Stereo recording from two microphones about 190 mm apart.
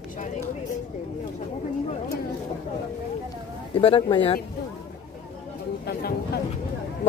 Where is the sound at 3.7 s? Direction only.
30° left (ahead or behind).